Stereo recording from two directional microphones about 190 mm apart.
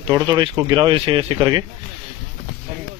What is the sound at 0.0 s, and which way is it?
Speech, 20° right (ahead or behind).